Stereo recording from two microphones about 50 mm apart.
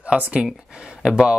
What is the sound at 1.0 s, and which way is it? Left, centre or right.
Speech, centre.